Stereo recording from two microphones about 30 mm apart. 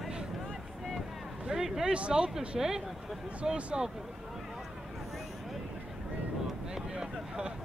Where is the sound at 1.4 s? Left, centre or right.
Centre.